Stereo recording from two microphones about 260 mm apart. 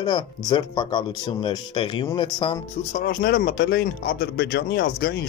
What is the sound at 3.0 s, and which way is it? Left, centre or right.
Speech, left.